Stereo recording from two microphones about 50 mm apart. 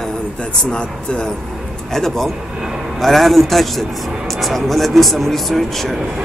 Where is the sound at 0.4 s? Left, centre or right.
Centre.